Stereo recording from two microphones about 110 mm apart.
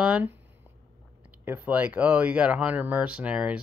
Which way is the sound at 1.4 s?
15° right (ahead or behind).